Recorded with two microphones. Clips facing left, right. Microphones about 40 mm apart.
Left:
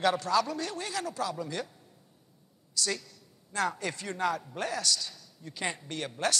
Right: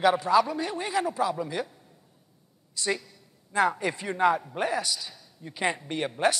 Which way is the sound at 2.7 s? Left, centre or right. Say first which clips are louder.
Right 4 dB; right.